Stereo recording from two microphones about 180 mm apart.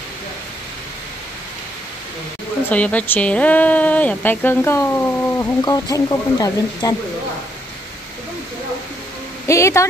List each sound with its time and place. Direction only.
2.7 s speech: 5° left (ahead or behind)
9.5 s speech: 15° left (ahead or behind)